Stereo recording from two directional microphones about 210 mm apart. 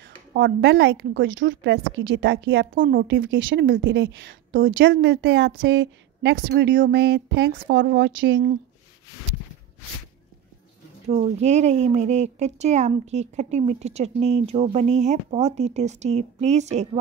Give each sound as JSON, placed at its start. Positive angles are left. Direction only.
{"t": 0.6, "sound": "speech", "side_deg": -60}
{"t": 2.7, "sound": "a woman's voice", "side_deg": -40}
{"t": 3.3, "sound": "speech", "side_deg": -65}
{"t": 4.5, "sound": "a woman's voice", "side_deg": -45}
{"t": 4.7, "sound": "speech", "side_deg": -55}
{"t": 11.4, "sound": "a woman's voice", "side_deg": -35}